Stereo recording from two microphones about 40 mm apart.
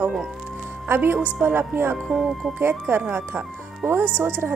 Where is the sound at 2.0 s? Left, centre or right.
Centre.